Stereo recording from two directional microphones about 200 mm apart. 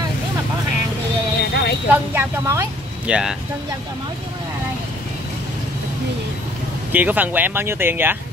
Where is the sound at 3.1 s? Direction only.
5° right (ahead or behind).